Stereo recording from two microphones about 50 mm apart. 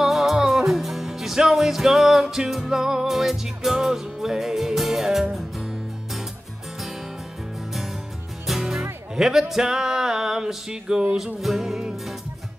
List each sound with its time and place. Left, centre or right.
0.0 s music: centre
8.5 s music: centre
9.1 s a sound: centre
11.1 s music: centre